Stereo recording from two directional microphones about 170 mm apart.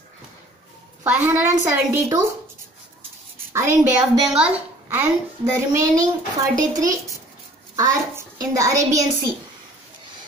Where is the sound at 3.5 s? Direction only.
15° right (ahead or behind).